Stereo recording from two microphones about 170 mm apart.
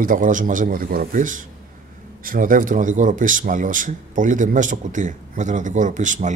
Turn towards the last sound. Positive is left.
turn(degrees=-45)  # may be behind; listen again after turning